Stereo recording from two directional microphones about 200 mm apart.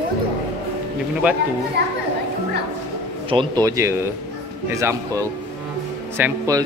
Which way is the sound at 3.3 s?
25° right (ahead or behind).